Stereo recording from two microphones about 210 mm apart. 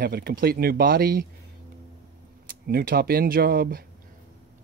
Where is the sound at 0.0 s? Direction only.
45° right (ahead or behind).